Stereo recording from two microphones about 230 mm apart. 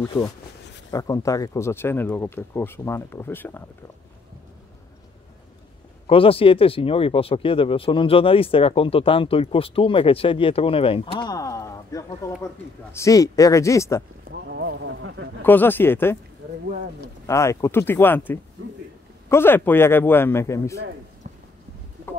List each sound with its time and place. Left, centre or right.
0.9 s speech: centre
6.0 s speech: left
14.3 s a sound: right
15.4 s speech: centre
17.3 s speech: centre